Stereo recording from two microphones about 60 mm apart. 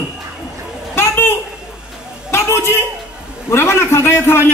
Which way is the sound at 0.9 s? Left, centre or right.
Left.